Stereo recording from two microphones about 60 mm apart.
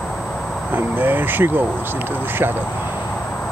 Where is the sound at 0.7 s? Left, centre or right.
Right.